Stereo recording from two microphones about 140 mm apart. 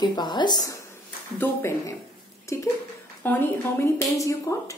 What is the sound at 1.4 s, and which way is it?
Speech, 20° left (ahead or behind).